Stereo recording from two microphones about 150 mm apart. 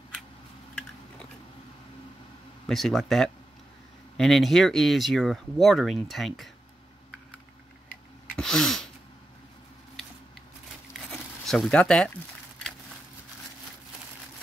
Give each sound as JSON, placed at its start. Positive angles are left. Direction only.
{"t": 2.7, "sound": "speech", "side_deg": 0}
{"t": 8.4, "sound": "sneeze", "side_deg": 5}
{"t": 11.1, "sound": "zipper", "side_deg": 5}